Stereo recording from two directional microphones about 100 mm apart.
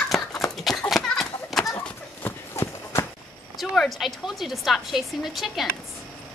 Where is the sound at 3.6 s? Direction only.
Centre (ahead or behind).